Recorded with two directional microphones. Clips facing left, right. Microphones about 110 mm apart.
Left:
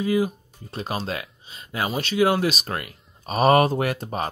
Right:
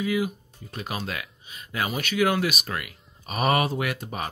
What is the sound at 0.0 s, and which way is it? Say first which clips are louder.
Speech: left 4 dB; 35° left (ahead or behind).